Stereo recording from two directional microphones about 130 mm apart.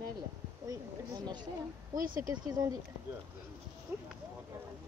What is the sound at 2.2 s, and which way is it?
Speech, 30° right (ahead or behind).